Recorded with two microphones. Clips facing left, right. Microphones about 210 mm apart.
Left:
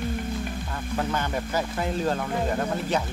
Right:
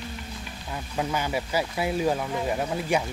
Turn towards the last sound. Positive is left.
turn(degrees=-10)  # may be behind; listen again after turning